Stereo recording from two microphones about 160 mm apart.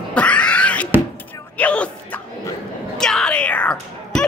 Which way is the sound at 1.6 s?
10° left (ahead or behind).